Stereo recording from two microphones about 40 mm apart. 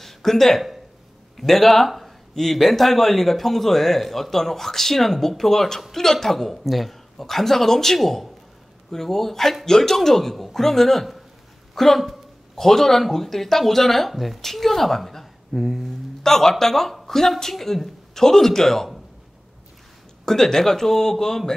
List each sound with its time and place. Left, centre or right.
0.0 s a sound: centre
1.3 s a woman's voice: centre
16.2 s speech: centre
20.2 s speech: centre